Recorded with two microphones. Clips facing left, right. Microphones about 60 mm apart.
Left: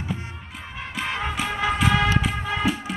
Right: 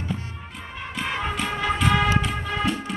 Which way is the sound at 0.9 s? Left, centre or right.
Centre.